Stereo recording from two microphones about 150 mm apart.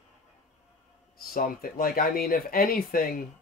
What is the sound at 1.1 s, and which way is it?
Speech, 80° left.